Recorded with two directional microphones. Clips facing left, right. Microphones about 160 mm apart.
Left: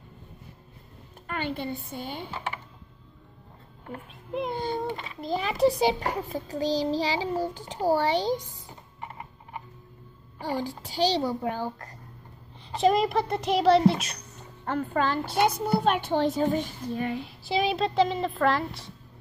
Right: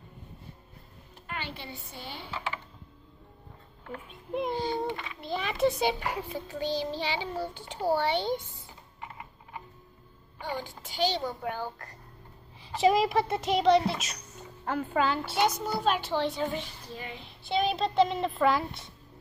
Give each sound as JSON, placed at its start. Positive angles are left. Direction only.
{"t": 1.2, "sound": "a woman's voice", "side_deg": 45}
{"t": 4.1, "sound": "a woman's voice", "side_deg": 0}
{"t": 4.6, "sound": "a child's voice", "side_deg": 50}
{"t": 5.2, "sound": "child singing", "side_deg": 40}
{"t": 10.4, "sound": "child singing", "side_deg": 35}
{"t": 12.7, "sound": "a woman's voice", "side_deg": 0}
{"t": 15.3, "sound": "a child's voice", "side_deg": 55}
{"t": 17.2, "sound": "a woman's voice", "side_deg": 0}